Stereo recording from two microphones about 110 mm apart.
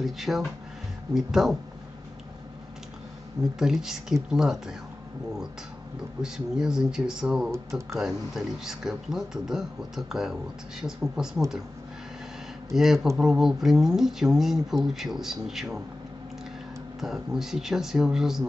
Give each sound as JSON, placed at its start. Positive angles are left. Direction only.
{"t": 0.0, "sound": "speech", "side_deg": 0}
{"t": 3.5, "sound": "speech", "side_deg": -5}
{"t": 6.2, "sound": "speech", "side_deg": -5}
{"t": 12.7, "sound": "speech", "side_deg": 0}
{"t": 17.0, "sound": "speech", "side_deg": -5}